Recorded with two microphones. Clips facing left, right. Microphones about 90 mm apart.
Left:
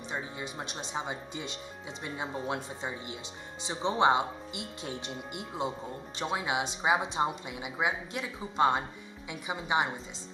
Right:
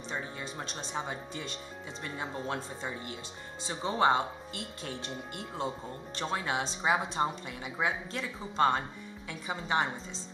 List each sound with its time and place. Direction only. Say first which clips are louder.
0.1 s speech: left 1 dB; 15° left (ahead or behind)